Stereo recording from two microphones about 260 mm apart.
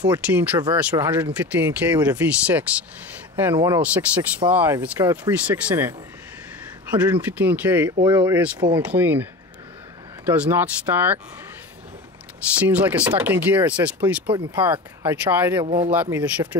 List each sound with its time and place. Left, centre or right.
0.3 s speech: centre
12.5 s speech: centre
15.6 s speech: right
15.9 s speech: centre